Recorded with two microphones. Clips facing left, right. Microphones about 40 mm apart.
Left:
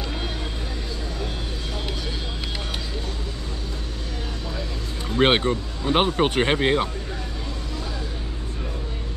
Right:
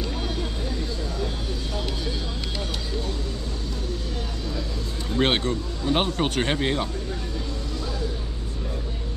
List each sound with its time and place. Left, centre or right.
5.1 s speech: left